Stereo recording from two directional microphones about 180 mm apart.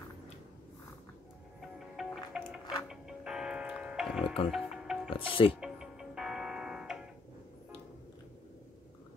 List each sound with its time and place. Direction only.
1.6 s music: 5° right (ahead or behind)
5.1 s speech: 30° left (ahead or behind)
5.6 s music: 5° right (ahead or behind)